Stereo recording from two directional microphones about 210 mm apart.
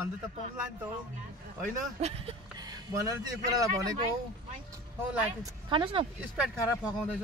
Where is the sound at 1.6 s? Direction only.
30° right (ahead or behind).